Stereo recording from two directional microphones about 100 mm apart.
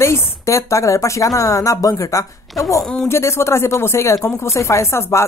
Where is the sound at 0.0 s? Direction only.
30° left (ahead or behind).